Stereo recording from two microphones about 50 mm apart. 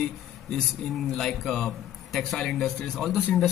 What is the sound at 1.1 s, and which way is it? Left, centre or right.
A man's voice, centre.